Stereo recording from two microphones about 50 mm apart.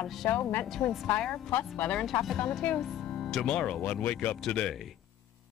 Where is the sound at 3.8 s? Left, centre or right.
Left.